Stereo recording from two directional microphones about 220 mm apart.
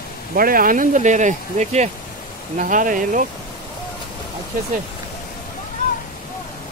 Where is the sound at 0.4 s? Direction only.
40° right (ahead or behind).